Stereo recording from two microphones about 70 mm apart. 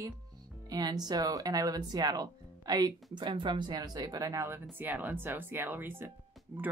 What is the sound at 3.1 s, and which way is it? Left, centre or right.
Speech, right.